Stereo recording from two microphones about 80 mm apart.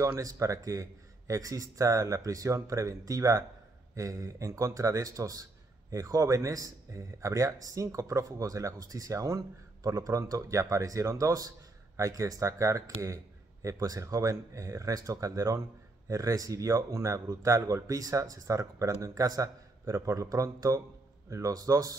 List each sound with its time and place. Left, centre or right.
0.2 s a man's voice: right